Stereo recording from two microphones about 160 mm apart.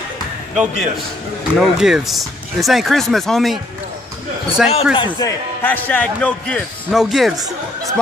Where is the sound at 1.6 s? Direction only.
5° right (ahead or behind).